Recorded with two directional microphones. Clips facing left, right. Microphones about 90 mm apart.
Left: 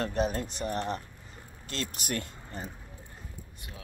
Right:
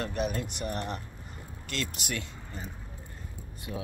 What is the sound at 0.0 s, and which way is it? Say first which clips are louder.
Speech: left 2 dB; 35° left (ahead or behind).